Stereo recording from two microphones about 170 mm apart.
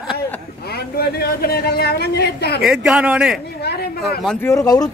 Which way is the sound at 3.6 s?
70° left (ahead or behind).